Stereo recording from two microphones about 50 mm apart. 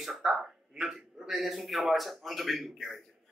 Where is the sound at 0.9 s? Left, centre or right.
Centre.